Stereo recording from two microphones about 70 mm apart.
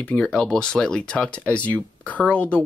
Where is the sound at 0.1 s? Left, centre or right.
Centre.